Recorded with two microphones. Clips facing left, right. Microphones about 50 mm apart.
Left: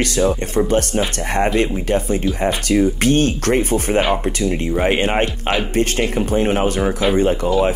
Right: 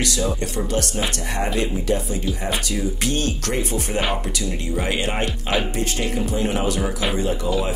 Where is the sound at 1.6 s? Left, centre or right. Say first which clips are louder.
Left 4 dB; left.